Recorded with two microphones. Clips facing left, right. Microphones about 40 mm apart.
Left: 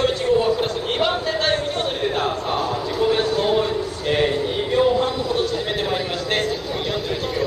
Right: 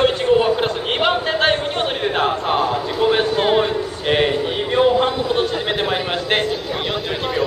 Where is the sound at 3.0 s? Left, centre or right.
Right.